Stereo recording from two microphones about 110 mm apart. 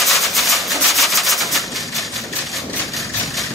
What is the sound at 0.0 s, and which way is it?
Rub, centre (ahead or behind).